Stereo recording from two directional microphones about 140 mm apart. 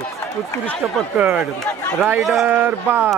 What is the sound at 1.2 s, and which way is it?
Speech, 5° right (ahead or behind).